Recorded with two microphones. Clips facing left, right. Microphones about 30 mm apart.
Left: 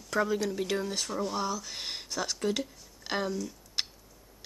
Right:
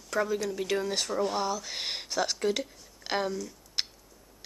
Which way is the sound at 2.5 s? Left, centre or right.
Centre.